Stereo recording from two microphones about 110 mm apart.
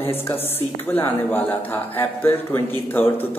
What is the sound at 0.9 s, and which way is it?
Speech, 20° left (ahead or behind).